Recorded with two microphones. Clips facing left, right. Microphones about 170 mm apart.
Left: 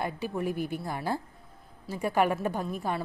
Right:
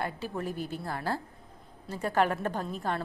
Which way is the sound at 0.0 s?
15° left (ahead or behind).